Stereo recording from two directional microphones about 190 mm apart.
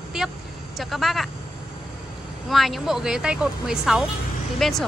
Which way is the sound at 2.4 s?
Centre (ahead or behind).